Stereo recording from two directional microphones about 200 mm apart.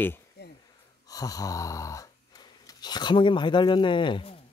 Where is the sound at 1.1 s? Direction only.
20° left (ahead or behind).